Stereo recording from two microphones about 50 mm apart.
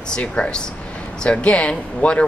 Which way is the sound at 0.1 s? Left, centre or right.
Centre.